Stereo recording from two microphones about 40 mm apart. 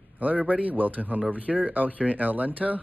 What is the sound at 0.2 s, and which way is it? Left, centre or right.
A man's voice, right.